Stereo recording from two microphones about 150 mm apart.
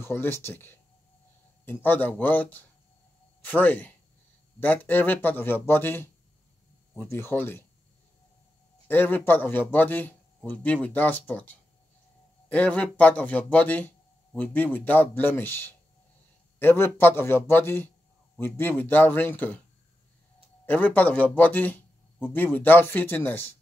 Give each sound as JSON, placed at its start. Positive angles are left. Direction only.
{"t": 0.0, "sound": "speech", "side_deg": 15}
{"t": 8.8, "sound": "speech", "side_deg": 15}
{"t": 20.6, "sound": "speech", "side_deg": 10}